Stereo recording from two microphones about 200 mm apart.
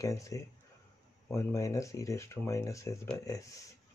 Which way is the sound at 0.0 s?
15° left (ahead or behind).